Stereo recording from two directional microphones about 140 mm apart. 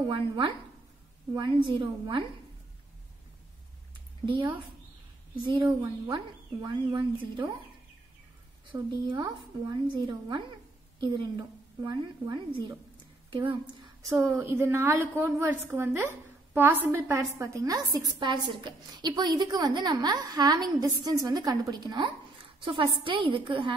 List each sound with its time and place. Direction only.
0.0 s a woman's voice: 35° right (ahead or behind)
4.3 s a woman's voice: 35° right (ahead or behind)
8.7 s a woman's voice: 30° right (ahead or behind)
14.0 s a woman's voice: 20° right (ahead or behind)